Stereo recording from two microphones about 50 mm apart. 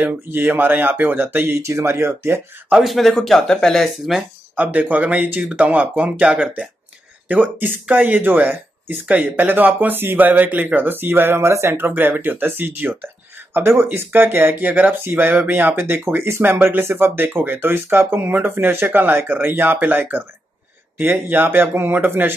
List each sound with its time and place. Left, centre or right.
0.0 s speech: right
1.6 s speech: right
2.8 s speech: centre
4.6 s speech: right
7.2 s speech: right
13.5 s speech: right
13.8 s speech: right